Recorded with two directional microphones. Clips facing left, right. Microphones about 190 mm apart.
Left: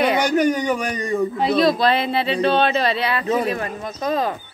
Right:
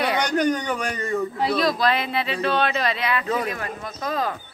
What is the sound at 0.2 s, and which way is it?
A man's voice, 5° left (ahead or behind).